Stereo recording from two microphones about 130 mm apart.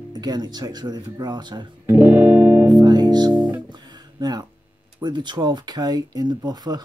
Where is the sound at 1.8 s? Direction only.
15° right (ahead or behind).